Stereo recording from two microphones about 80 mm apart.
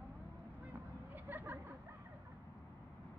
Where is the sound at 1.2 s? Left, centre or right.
Right.